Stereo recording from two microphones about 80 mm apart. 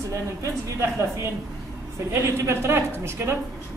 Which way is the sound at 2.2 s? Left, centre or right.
Right.